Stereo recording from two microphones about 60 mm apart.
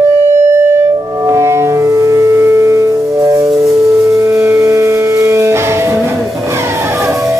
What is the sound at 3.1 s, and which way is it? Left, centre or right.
Music, right.